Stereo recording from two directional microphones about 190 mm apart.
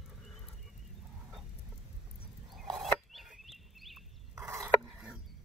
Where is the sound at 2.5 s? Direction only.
Centre (ahead or behind).